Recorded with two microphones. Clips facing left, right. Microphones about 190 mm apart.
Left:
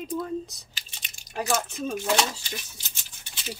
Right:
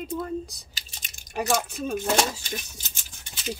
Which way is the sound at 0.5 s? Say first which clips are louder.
Right 1 dB; 40° right (ahead or behind).